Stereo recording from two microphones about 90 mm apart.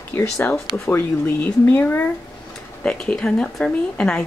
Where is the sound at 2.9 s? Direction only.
10° left (ahead or behind).